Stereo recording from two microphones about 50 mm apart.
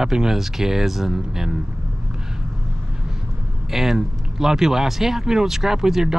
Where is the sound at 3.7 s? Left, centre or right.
Centre.